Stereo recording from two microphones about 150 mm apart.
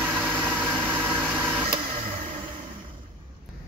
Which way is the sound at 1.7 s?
35° right (ahead or behind).